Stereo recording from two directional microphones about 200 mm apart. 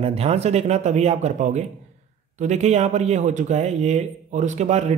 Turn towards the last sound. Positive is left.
turn(degrees=-35)  # may be behind; listen again after turning